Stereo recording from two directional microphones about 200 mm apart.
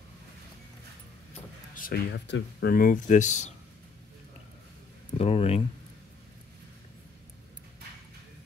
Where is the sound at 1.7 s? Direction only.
50° left (ahead or behind); by 3.5 s 35° left (ahead or behind).